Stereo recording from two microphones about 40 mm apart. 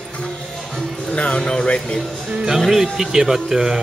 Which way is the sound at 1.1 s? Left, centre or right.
Left.